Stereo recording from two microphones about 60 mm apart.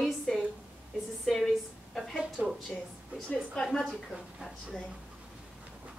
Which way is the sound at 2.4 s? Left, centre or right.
Centre.